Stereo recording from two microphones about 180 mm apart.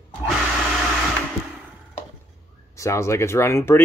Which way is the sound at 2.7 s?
15° left (ahead or behind).